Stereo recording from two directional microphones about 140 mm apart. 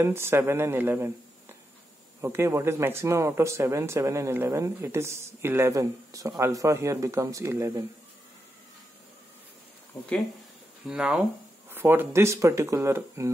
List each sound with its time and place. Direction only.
0.0 s speech: 15° right (ahead or behind)
2.2 s speech: 20° right (ahead or behind)
10.9 s speech: 5° right (ahead or behind)